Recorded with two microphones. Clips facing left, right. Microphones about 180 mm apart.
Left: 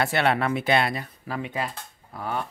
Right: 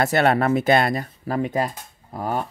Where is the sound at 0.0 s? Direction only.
45° right (ahead or behind).